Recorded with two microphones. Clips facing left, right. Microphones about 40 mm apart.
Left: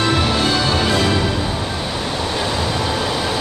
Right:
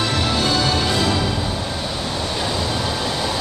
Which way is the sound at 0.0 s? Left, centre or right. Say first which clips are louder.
Left 3 dB; centre.